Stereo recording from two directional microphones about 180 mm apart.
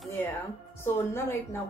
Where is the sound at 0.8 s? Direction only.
15° left (ahead or behind).